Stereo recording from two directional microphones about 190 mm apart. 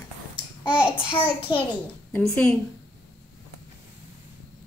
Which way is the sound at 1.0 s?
25° left (ahead or behind).